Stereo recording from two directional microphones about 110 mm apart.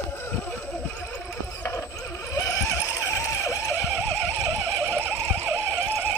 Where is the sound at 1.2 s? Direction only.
20° left (ahead or behind).